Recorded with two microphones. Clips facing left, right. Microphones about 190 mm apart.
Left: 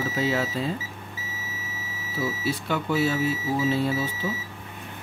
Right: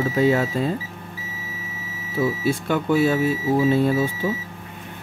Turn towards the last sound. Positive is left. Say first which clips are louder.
# right 6 dB
turn(degrees=-50)  # may be behind; listen again after turning